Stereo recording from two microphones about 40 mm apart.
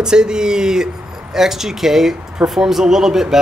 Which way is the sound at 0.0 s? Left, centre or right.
Centre.